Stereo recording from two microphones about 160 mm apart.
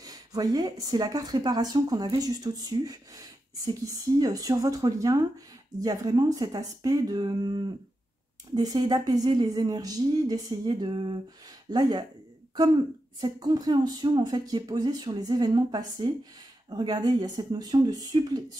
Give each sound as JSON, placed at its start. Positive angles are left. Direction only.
{"t": 0.0, "sound": "speech", "side_deg": -25}